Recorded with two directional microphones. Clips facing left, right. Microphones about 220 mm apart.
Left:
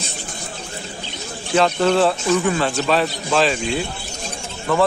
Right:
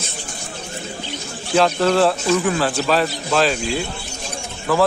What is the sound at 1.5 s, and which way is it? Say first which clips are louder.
A man's voice: even; centre (ahead or behind).